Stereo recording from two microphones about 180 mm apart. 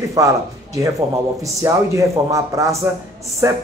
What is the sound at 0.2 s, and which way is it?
Speech, 20° right (ahead or behind).